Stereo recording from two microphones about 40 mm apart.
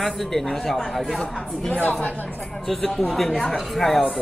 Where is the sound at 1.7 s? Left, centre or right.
Left.